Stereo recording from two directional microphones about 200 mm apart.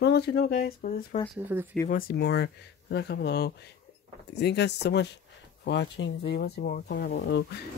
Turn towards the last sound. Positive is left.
turn(degrees=55)  # may be behind; listen again after turning